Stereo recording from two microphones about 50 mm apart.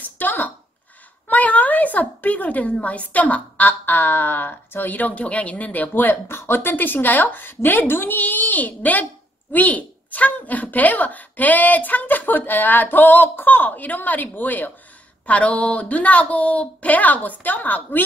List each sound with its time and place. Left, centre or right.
0.0 s a sound: left
2.8 s a woman's voice: left
6.2 s a woman's voice: left